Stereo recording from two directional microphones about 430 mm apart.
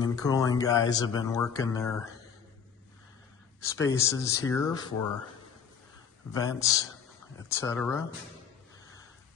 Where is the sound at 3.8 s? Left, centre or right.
Centre.